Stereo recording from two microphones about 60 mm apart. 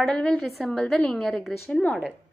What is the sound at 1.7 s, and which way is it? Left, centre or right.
Speech, left.